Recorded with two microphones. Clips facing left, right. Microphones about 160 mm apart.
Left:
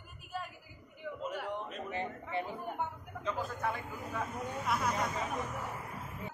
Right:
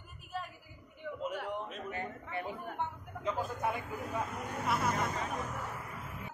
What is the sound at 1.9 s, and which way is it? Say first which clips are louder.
Speech: left 2 dB; 25° left (ahead or behind).